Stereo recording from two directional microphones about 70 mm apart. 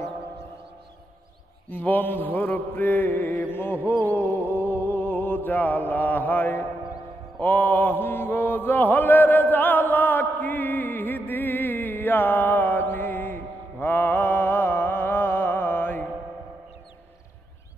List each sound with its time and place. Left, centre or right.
1.7 s mantra: left
7.3 s chant: left